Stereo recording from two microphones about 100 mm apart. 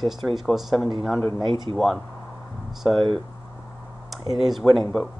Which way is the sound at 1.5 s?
60° right (ahead or behind).